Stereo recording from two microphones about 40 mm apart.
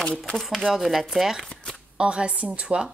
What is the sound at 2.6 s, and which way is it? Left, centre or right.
Speech, right.